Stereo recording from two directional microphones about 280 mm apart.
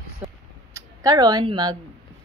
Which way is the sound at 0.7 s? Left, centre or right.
Centre.